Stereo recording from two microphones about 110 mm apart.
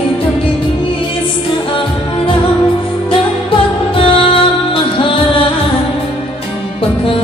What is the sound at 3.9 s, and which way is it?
Music, 55° left (ahead or behind).